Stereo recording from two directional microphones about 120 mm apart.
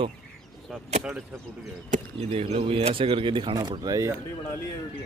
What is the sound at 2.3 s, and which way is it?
Speech, 60° right (ahead or behind).